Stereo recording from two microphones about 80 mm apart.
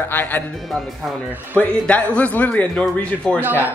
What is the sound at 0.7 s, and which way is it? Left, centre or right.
Speech, centre.